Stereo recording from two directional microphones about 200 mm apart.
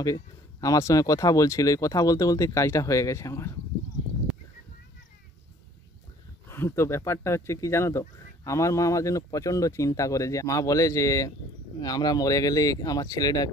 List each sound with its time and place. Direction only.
0.0 s speech: 15° left (ahead or behind)
6.4 s speech: 10° left (ahead or behind)